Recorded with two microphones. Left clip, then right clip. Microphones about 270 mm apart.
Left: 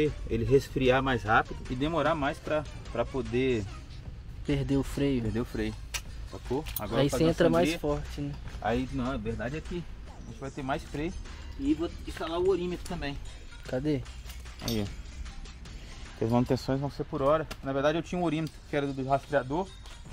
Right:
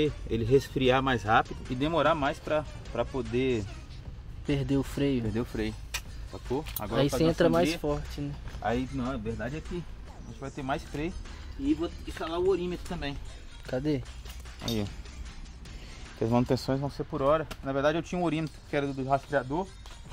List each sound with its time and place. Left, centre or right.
0.0 s speech: centre
1.6 s speech: centre
16.2 s speech: right
17.2 s speech: centre